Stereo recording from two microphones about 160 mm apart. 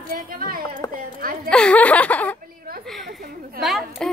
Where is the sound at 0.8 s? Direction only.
20° left (ahead or behind).